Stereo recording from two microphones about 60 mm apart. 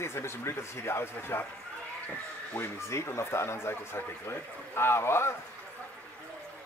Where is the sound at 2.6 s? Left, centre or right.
Left.